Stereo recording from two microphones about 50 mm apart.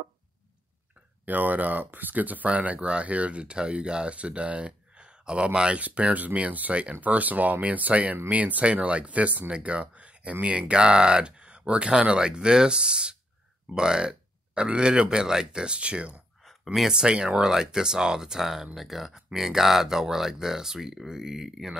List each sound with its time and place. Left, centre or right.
1.2 s speech: right
16.7 s speech: centre